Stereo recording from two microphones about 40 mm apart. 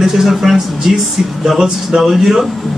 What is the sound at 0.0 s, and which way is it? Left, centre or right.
Speech, centre.